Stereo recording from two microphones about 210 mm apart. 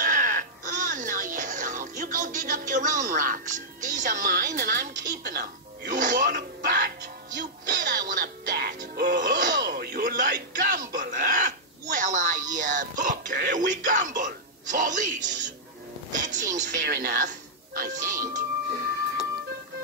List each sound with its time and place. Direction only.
0.0 s music: 40° right (ahead or behind)
3.8 s speech: 40° right (ahead or behind)
7.3 s music: 45° right (ahead or behind)
16.1 s speech: 35° right (ahead or behind)